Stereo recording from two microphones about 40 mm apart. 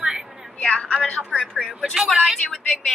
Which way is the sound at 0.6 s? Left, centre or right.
Left.